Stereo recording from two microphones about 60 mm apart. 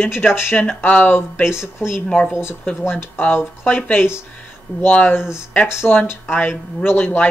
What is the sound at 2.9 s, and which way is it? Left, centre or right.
Speech, left.